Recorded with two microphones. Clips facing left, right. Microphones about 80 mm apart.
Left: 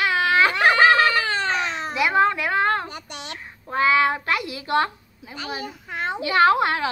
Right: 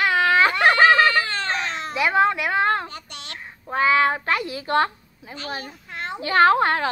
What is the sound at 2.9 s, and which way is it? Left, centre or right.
Speech, centre.